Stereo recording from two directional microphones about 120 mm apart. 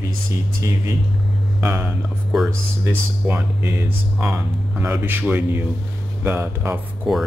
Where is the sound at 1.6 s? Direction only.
15° right (ahead or behind).